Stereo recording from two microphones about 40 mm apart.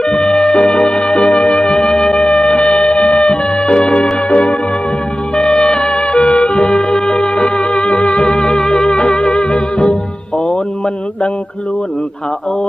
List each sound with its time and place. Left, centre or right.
0.4 s music: left
2.2 s music: left
3.3 s music: centre
5.4 s music: left
6.9 s music: left
7.4 s music: left